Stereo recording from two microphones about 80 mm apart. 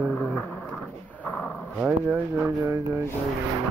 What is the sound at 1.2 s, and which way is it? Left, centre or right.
Dog, centre.